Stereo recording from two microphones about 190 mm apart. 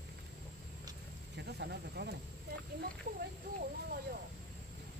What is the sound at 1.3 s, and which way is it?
Speech, 60° right (ahead or behind).